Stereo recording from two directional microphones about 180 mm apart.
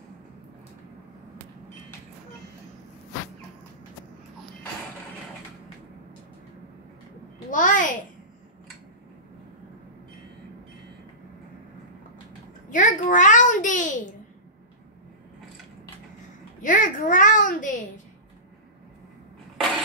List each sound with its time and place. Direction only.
7.5 s babbling: 45° left (ahead or behind)
12.6 s a sound: 45° left (ahead or behind)
16.6 s babbling: 45° left (ahead or behind)